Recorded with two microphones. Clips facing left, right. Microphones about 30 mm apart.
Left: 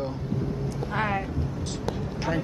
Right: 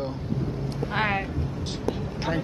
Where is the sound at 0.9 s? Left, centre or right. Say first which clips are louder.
Right 2 dB; right.